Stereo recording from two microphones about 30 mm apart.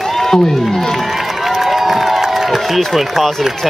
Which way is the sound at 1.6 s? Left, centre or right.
Centre.